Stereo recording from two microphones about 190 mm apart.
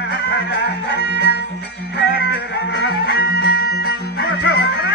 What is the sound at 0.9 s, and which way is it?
Music, 65° left (ahead or behind).